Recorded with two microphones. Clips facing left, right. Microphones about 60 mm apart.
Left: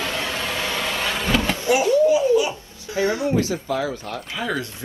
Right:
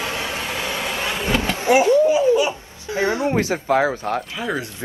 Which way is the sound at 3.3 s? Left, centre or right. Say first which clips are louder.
Right 3 dB; right.